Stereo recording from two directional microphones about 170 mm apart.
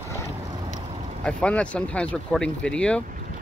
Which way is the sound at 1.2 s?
5° left (ahead or behind).